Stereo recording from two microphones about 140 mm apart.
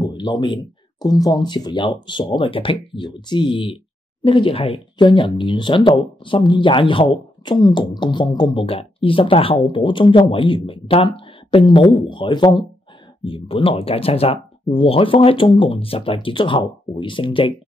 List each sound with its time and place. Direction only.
0.0 s speech: 30° left (ahead or behind)